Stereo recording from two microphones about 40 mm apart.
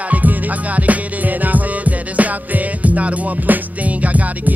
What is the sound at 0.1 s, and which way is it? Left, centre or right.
Music, right.